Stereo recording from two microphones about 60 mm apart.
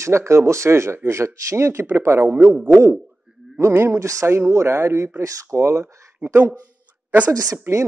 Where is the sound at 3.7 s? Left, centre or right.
Right.